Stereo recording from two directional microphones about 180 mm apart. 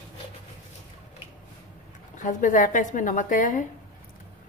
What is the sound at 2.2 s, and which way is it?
Speech, 45° left (ahead or behind).